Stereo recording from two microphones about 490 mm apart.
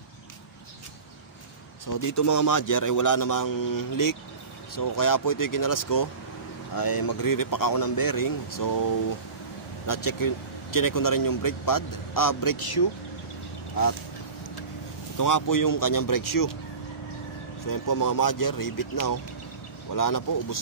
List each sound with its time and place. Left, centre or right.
1.9 s speech: left
9.8 s speech: left
15.1 s speech: left
17.6 s speech: left